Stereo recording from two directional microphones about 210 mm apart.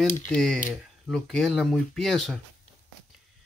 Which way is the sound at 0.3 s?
Centre (ahead or behind).